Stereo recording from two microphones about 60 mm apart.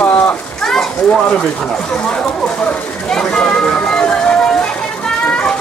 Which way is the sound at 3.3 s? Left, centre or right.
Centre.